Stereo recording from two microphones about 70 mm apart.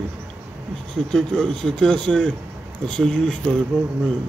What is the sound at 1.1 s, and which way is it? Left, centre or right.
Speech, centre.